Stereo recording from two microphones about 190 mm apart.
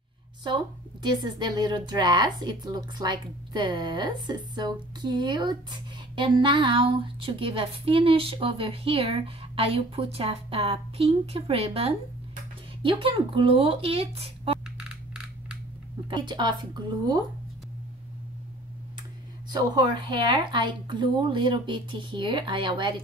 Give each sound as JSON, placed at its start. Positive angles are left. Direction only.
{"t": 1.0, "sound": "speech", "side_deg": -20}
{"t": 14.8, "sound": "coin", "side_deg": -5}
{"t": 16.1, "sound": "speech", "side_deg": -25}
{"t": 19.5, "sound": "speech", "side_deg": -25}